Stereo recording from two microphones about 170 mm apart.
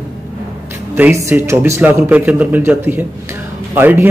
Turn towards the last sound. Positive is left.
turn(degrees=-10)  # may be behind; listen again after turning